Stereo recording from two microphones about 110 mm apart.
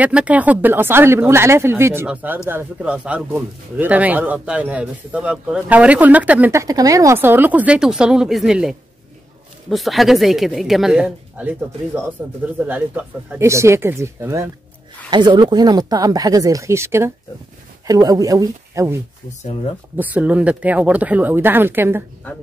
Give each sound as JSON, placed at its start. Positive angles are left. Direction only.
{"t": 0.0, "sound": "speech", "side_deg": -10}
{"t": 6.5, "sound": "speech", "side_deg": -30}
{"t": 7.2, "sound": "speech", "side_deg": -20}
{"t": 13.4, "sound": "speech", "side_deg": -25}
{"t": 15.0, "sound": "speech", "side_deg": -45}
{"t": 20.0, "sound": "speech", "side_deg": -15}